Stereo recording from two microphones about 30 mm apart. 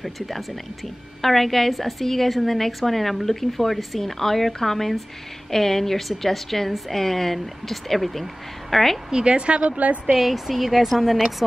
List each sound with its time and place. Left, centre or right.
0.0 s a woman's voice: centre
9.1 s a woman's voice: right
9.8 s a woman's voice: right
10.1 s speech: centre